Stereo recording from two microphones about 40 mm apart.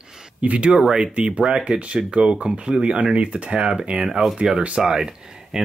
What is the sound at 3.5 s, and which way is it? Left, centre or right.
Speech, right.